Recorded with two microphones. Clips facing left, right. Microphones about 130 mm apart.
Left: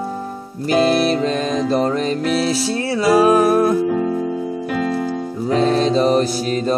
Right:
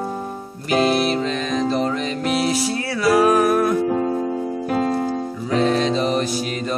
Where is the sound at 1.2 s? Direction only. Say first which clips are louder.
Left 3 dB; 40° left (ahead or behind).